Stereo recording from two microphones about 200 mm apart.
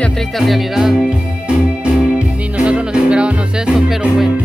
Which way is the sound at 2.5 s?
5° right (ahead or behind).